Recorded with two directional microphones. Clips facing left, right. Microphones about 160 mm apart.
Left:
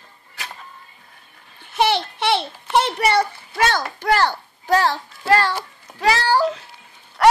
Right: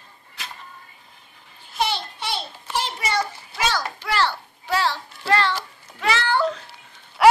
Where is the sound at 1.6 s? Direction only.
65° left (ahead or behind); by 6.4 s 35° left (ahead or behind).